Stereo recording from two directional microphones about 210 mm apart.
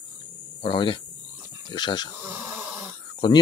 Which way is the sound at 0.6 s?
20° left (ahead or behind).